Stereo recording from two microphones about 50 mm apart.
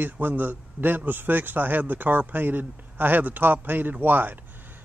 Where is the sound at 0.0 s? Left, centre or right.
Right.